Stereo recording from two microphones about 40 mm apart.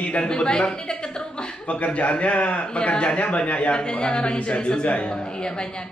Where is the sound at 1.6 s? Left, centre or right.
Left.